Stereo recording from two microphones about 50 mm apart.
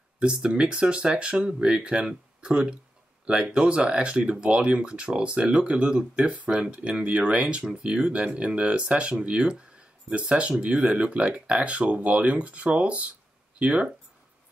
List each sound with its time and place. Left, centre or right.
0.2 s speech: centre